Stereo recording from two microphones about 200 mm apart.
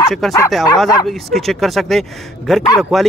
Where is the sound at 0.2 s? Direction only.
Centre (ahead or behind).